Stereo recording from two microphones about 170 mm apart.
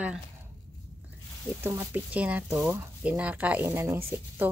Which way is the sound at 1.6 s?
10° right (ahead or behind).